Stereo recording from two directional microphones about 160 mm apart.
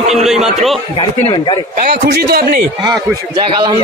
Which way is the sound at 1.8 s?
75° right (ahead or behind).